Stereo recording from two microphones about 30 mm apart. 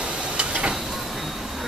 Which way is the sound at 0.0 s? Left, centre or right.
Right.